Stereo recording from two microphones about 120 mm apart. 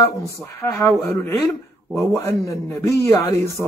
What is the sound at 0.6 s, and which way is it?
Speech, 20° left (ahead or behind).